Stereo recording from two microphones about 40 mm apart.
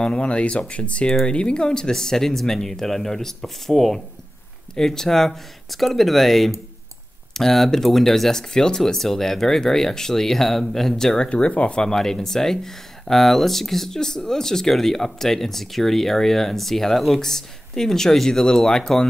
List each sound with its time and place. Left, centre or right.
0.0 s speech: left
11.2 s speech: left
11.8 s speech: centre